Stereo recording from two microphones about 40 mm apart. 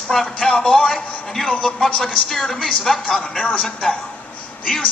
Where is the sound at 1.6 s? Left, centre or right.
Centre.